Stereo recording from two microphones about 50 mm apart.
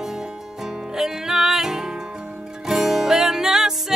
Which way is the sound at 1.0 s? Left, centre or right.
Centre.